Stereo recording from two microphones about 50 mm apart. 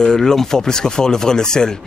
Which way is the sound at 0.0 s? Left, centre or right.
Centre.